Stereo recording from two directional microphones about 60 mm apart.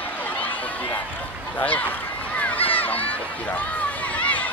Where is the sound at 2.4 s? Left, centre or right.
Left.